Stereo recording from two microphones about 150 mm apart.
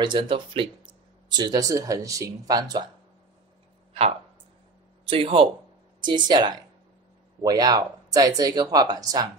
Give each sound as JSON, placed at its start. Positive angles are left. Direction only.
{"t": 0.0, "sound": "speech", "side_deg": -30}
{"t": 5.0, "sound": "speech", "side_deg": -35}